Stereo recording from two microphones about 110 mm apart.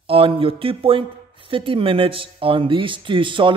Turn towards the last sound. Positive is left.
turn(degrees=-50)  # may be behind; listen again after turning